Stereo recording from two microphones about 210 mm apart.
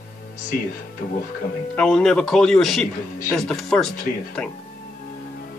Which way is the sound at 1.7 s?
Centre (ahead or behind).